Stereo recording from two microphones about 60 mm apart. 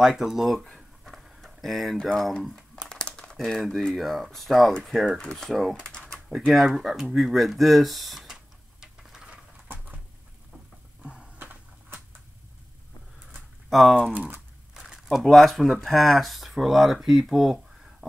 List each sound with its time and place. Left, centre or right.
0.0 s a sound: centre
2.0 s speech: centre
2.4 s crumpling: centre
3.3 s speech: centre
5.8 s typing: centre
6.4 s speech: centre
8.7 s a sound: centre
9.3 s patter: right
11.3 s a sound: right
13.7 s speech: centre
14.7 s crumpling: centre
15.2 s speech: centre